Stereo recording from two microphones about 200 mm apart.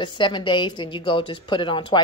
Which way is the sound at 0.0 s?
25° left (ahead or behind).